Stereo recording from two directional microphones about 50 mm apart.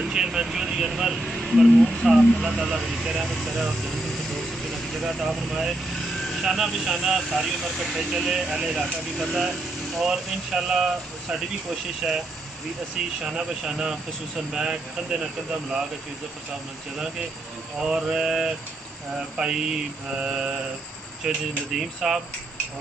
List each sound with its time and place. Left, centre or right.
0.0 s speech: centre
1.2 s speech: centre
2.0 s speech: centre
5.3 s speech: centre
17.8 s speech: centre